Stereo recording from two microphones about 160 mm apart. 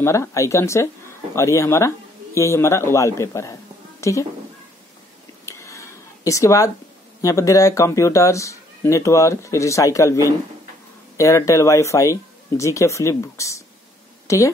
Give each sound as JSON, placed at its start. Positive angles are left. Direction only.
{"t": 0.0, "sound": "a woman's voice", "side_deg": 15}
{"t": 5.4, "sound": "a sound", "side_deg": 20}
{"t": 7.2, "sound": "speech", "side_deg": 20}
{"t": 11.1, "sound": "speech", "side_deg": 20}